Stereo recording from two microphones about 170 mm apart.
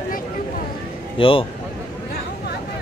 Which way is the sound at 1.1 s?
30° left (ahead or behind).